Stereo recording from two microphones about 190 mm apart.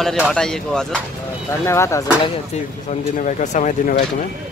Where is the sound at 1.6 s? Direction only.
15° left (ahead or behind).